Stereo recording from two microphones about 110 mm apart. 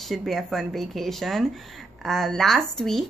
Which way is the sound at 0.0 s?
Centre (ahead or behind).